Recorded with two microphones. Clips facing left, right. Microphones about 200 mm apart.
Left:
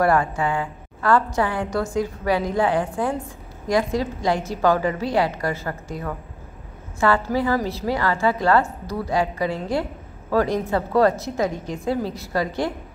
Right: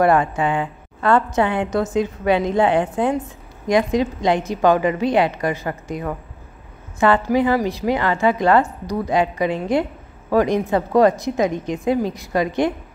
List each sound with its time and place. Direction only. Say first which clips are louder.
0.0 s a woman's voice: right 3 dB; 20° right (ahead or behind)